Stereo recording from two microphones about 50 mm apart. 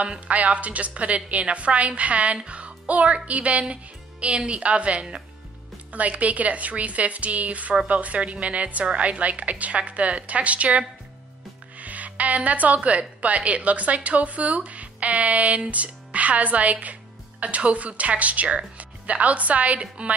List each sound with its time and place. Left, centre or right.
0.0 s a woman's voice: right